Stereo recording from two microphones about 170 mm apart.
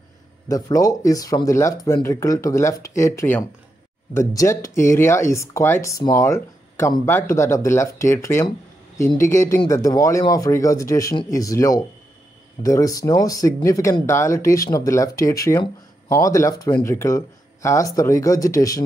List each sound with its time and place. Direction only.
0.5 s speech: 20° left (ahead or behind)